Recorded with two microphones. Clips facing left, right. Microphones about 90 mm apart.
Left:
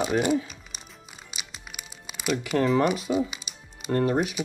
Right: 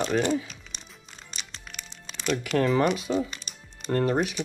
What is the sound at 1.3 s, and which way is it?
Music, 10° left (ahead or behind).